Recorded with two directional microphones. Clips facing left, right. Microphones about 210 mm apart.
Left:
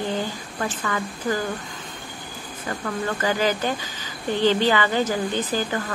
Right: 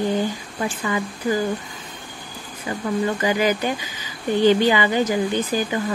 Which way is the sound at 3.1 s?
15° right (ahead or behind).